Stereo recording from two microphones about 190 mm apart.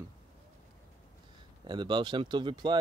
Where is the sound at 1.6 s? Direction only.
25° right (ahead or behind).